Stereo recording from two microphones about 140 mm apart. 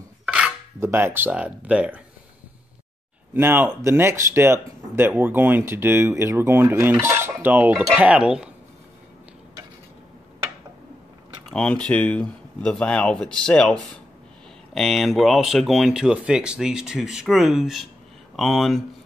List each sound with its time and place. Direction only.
0.2 s cutlery: 5° right (ahead or behind)
0.7 s speech: 15° right (ahead or behind)
3.3 s speech: 15° right (ahead or behind)
11.5 s speech: 10° left (ahead or behind)